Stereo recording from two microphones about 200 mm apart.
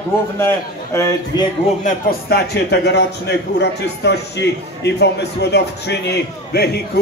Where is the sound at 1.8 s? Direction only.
50° left (ahead or behind).